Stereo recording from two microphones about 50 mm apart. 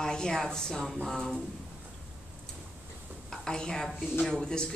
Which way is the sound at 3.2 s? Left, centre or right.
Centre.